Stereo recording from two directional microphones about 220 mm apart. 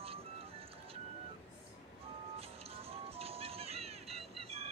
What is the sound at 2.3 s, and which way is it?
Music, 25° right (ahead or behind).